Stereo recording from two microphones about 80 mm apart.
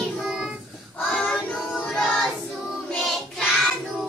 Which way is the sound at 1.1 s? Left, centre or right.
Centre.